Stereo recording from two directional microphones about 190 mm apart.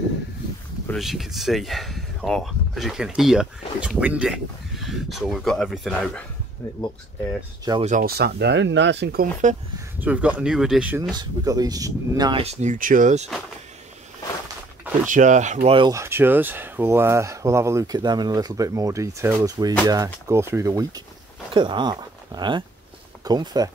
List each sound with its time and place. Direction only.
0.8 s speech: centre (ahead or behind)
7.8 s speech: 45° right (ahead or behind)
9.8 s speech: 10° right (ahead or behind)
11.4 s speech: 20° right (ahead or behind); by 13.3 s 40° right (ahead or behind)
15.0 s speech: 40° right (ahead or behind)
15.9 s speech: 15° right (ahead or behind)